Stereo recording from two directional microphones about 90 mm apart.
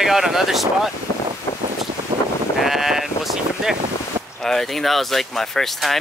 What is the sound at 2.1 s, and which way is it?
Sheep, 55° right (ahead or behind).